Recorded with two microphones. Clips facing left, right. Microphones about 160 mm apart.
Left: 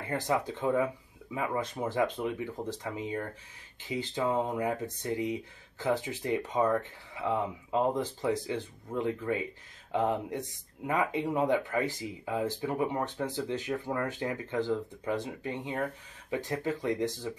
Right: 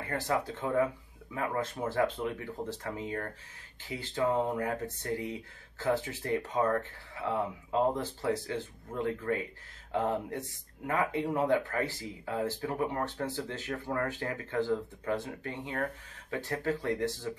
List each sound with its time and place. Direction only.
0.1 s speech: 15° left (ahead or behind)